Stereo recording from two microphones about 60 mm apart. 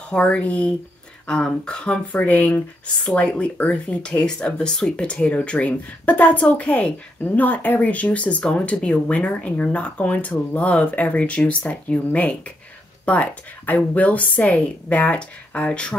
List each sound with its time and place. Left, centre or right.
0.1 s speech: centre
3.0 s speech: centre